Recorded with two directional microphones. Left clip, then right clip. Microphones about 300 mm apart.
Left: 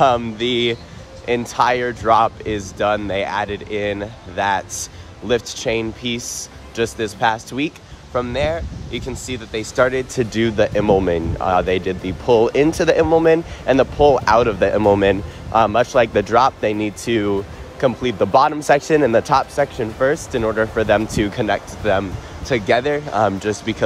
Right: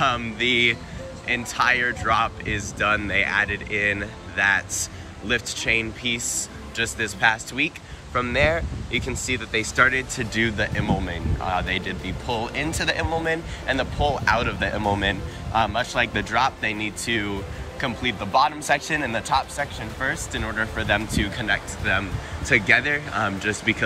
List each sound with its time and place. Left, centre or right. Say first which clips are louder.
0.0 s speech: left 6 dB; centre